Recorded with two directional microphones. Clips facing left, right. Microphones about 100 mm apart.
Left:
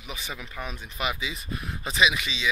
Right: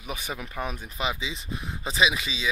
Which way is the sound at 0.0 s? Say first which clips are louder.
Right 3 dB; 45° right (ahead or behind).